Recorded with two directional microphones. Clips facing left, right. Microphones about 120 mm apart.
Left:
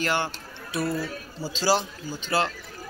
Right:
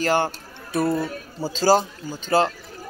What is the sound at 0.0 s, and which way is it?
Speech, 40° right (ahead or behind).